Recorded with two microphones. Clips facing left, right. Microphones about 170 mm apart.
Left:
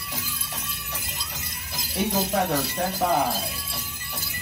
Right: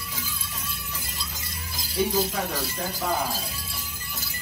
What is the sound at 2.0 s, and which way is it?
Speech, 70° left (ahead or behind).